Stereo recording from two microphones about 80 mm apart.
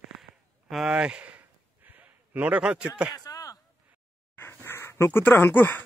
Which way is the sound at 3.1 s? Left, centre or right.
Left.